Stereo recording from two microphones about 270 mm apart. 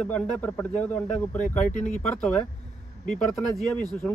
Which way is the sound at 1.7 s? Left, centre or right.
Left.